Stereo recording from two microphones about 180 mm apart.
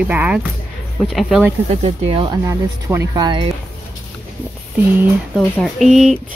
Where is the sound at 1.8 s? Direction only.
30° right (ahead or behind).